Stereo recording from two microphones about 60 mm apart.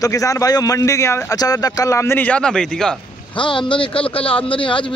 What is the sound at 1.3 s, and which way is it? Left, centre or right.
Speech, left.